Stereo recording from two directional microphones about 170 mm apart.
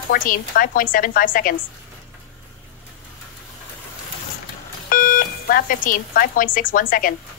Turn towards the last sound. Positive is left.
turn(degrees=55)  # may be behind; listen again after turning